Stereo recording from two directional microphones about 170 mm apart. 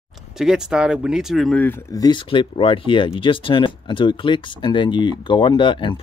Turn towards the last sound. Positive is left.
turn(degrees=30)  # may be behind; listen again after turning